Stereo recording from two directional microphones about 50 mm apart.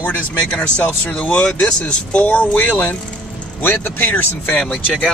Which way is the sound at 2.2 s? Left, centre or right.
Left.